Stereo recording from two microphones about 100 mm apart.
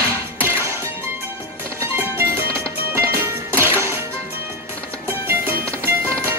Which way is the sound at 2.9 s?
25° right (ahead or behind).